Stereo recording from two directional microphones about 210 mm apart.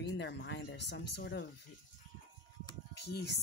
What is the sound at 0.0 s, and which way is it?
Speech, 55° left (ahead or behind).